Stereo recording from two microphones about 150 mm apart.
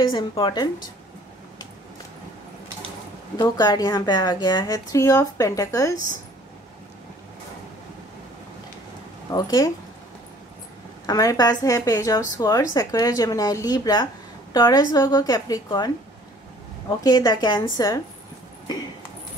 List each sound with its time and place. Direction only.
0.0 s a woman's voice: 35° left (ahead or behind)
3.3 s speech: 25° left (ahead or behind)
9.3 s speech: 25° left (ahead or behind)
11.1 s speech: 25° left (ahead or behind)
17.0 s speech: 25° left (ahead or behind)